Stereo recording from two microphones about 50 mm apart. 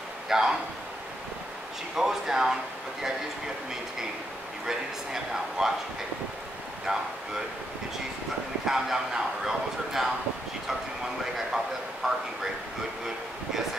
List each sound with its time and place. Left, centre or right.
0.3 s speech: centre
2.0 s speech: centre
4.6 s speech: centre
6.9 s speech: centre
8.6 s speech: centre
11.3 s speech: centre